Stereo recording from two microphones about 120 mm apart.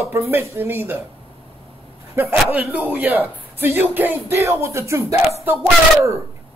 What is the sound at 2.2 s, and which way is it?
Speech, 20° right (ahead or behind).